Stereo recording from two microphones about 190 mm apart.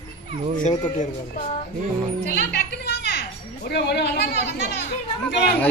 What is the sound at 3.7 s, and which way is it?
Speech, 60° left (ahead or behind).